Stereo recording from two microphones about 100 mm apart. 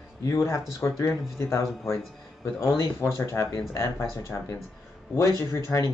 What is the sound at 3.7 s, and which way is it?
Speech, 25° left (ahead or behind).